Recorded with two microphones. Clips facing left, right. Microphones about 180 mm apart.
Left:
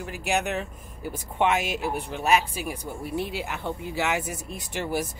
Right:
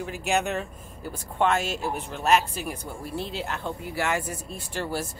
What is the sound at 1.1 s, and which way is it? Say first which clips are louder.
A woman's voice: even; 15° left (ahead or behind).